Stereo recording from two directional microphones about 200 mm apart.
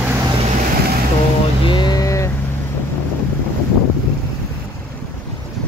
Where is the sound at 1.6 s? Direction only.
25° left (ahead or behind).